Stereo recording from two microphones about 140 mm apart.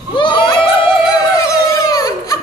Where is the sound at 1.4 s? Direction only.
25° left (ahead or behind).